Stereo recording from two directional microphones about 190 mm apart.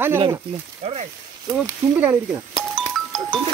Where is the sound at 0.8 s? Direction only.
30° right (ahead or behind).